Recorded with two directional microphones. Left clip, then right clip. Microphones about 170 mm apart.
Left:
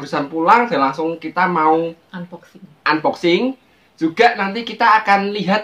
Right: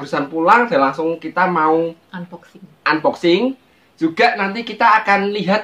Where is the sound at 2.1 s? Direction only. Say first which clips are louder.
Right 1 dB; 20° right (ahead or behind).